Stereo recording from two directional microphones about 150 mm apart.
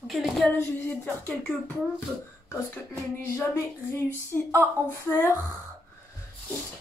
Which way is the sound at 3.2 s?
15° left (ahead or behind).